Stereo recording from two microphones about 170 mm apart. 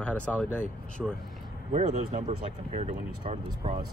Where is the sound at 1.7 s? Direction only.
45° right (ahead or behind).